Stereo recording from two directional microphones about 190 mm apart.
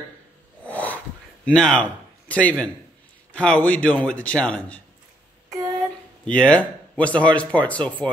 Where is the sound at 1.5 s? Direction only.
5° left (ahead or behind).